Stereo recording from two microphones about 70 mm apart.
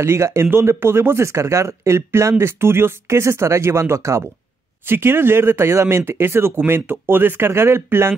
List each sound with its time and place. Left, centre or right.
0.0 s speech: right
4.8 s speech: right